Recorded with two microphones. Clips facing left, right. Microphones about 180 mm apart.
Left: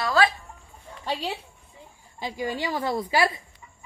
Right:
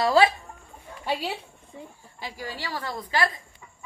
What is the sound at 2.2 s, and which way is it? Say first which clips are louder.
A woman's voice: left 7 dB; 20° left (ahead or behind).